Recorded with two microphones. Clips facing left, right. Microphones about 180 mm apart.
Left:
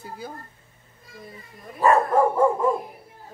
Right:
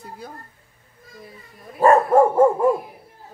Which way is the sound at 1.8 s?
45° right (ahead or behind).